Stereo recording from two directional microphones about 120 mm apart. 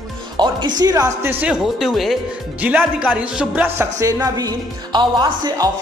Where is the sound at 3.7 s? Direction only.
30° right (ahead or behind).